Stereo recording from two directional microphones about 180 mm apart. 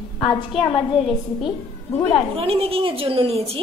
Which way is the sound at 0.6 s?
30° left (ahead or behind).